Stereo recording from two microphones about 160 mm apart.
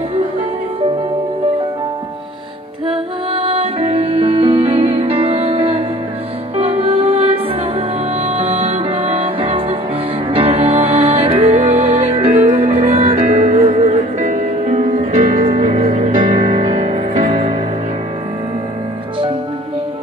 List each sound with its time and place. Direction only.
2.9 s music: 35° right (ahead or behind)